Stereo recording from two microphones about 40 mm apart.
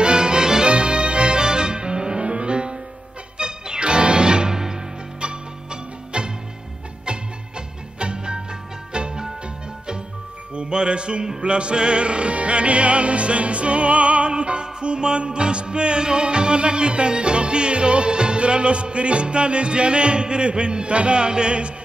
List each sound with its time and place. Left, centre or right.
0.0 s music: right
10.5 s music: right